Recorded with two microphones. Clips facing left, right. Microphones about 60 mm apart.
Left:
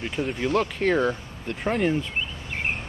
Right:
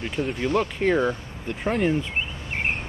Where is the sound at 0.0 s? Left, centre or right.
Centre.